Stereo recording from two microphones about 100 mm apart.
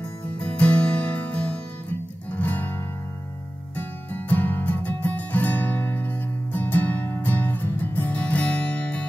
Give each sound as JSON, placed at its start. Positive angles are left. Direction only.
{"t": 0.3, "sound": "music", "side_deg": 10}
{"t": 3.7, "sound": "music", "side_deg": 20}